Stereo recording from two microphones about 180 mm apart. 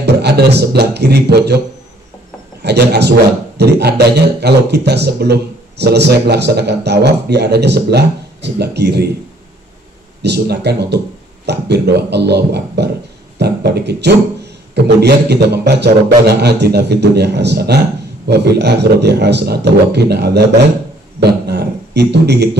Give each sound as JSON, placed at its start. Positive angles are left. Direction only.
{"t": 0.0, "sound": "music", "side_deg": -65}
{"t": 2.6, "sound": "a man's voice", "side_deg": -65}
{"t": 10.2, "sound": "a man's voice", "side_deg": -65}